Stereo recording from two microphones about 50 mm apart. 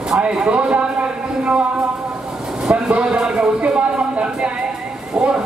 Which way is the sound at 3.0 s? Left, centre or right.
Centre.